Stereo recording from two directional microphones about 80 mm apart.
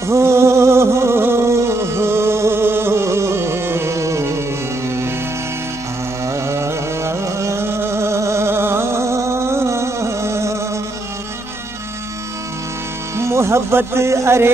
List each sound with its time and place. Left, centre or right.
0.0 s music: right
6.2 s carnatic music: right
13.2 s speech: right